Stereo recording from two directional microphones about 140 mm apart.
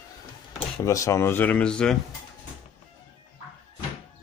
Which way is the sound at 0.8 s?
20° left (ahead or behind).